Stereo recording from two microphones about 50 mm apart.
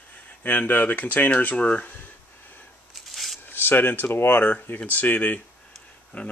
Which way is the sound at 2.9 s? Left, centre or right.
Centre.